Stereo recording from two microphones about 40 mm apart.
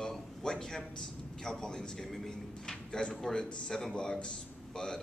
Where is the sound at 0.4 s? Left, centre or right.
Centre.